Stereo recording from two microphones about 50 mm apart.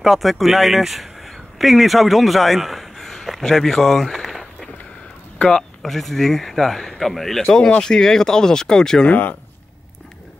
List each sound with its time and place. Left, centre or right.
0.0 s speech: centre
9.1 s speech: left